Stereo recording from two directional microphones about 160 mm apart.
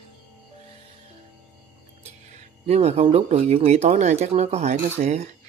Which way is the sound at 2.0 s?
40° right (ahead or behind).